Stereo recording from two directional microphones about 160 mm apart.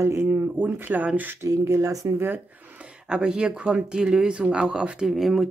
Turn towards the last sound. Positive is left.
turn(degrees=0)  # may be behind; listen again after turning